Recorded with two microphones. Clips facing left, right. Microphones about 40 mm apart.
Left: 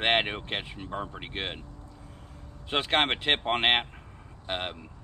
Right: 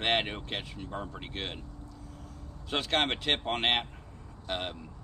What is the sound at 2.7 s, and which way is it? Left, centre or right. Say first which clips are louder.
Speech: left 3 dB; left.